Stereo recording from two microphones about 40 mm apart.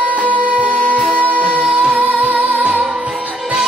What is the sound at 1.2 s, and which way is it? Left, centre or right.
Music, right.